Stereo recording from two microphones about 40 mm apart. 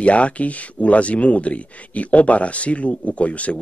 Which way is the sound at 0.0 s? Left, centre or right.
Left.